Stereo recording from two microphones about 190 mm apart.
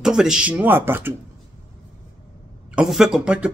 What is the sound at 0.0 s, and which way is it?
A man's voice, 5° right (ahead or behind).